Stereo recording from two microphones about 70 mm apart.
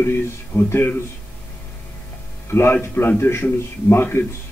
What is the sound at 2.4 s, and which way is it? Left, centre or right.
A man's voice, left.